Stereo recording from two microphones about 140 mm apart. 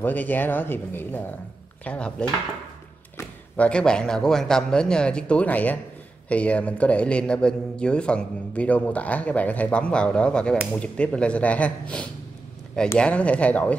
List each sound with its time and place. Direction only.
0.0 s a man's voice: 15° left (ahead or behind)